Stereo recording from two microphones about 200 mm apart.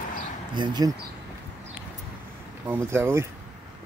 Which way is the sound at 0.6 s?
20° right (ahead or behind).